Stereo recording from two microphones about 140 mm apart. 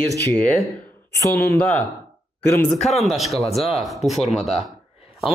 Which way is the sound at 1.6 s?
10° left (ahead or behind).